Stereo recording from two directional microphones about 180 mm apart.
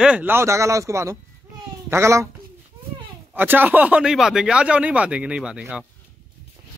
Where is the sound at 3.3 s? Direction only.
10° right (ahead or behind).